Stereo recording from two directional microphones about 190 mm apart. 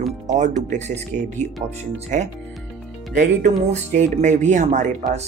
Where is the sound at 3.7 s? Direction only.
40° right (ahead or behind).